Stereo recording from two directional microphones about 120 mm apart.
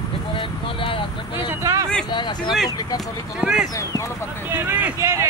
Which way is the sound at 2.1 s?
40° left (ahead or behind).